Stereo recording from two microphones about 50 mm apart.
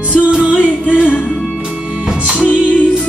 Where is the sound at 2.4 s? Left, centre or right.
Left.